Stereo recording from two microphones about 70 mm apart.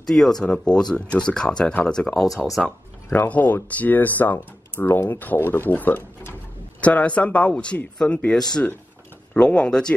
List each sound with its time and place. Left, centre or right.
0.0 s speech: centre
2.6 s speech: left